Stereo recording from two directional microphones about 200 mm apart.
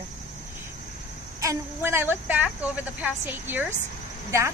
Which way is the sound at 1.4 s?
15° right (ahead or behind).